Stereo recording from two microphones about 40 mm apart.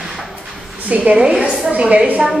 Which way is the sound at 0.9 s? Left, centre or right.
Right.